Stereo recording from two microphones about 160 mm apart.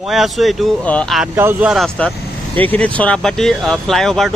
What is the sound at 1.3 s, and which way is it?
Speech, 15° right (ahead or behind).